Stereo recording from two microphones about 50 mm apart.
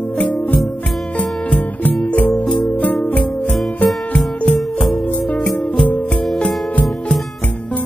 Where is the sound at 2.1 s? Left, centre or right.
Left.